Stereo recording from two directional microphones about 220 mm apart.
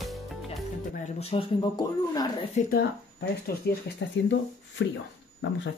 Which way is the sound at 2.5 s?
40° left (ahead or behind).